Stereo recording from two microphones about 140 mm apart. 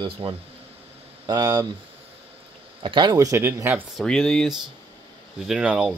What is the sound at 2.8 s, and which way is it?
Speech, 35° right (ahead or behind).